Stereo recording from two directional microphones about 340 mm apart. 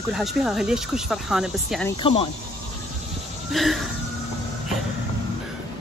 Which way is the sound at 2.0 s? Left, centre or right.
Centre.